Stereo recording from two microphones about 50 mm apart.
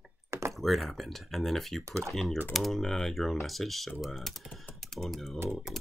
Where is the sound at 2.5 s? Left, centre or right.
Centre.